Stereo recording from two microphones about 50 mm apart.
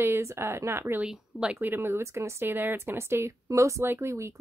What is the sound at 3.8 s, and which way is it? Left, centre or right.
Speech, right.